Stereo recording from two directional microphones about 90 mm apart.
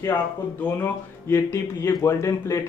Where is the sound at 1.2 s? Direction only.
30° left (ahead or behind).